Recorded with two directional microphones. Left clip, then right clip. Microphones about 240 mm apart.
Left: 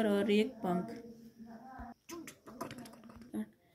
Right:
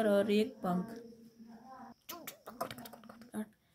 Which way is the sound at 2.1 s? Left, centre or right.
Right.